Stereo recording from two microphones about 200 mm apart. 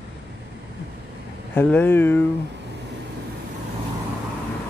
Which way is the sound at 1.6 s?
10° left (ahead or behind).